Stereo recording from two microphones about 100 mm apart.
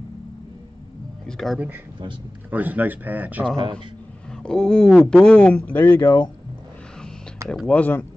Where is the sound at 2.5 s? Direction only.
15° right (ahead or behind).